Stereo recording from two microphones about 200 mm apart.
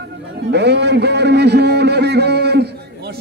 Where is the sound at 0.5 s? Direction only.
55° right (ahead or behind).